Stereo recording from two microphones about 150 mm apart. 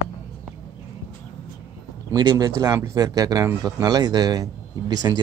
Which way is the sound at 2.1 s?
25° right (ahead or behind).